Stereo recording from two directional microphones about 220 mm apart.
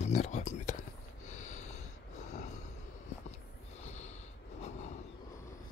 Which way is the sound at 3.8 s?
30° left (ahead or behind).